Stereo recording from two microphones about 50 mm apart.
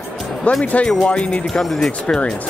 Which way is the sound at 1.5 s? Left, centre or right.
Centre.